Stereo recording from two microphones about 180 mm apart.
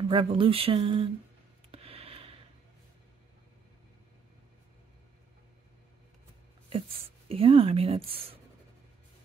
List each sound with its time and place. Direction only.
0.0 s speech: 30° right (ahead or behind)
1.7 s a sound: 35° right (ahead or behind)
7.2 s speech: 30° right (ahead or behind)